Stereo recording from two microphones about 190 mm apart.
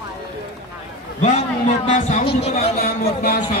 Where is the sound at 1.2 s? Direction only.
40° left (ahead or behind).